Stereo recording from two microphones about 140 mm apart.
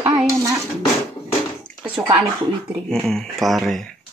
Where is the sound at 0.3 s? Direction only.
25° right (ahead or behind).